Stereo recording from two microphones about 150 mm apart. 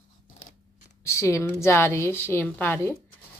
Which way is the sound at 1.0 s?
20° left (ahead or behind).